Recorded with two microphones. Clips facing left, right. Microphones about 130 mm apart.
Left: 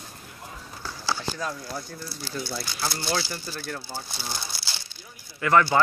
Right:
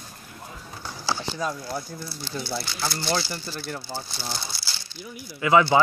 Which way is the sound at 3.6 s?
15° right (ahead or behind).